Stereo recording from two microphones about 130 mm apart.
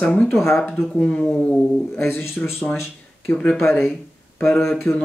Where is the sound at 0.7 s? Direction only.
5° left (ahead or behind).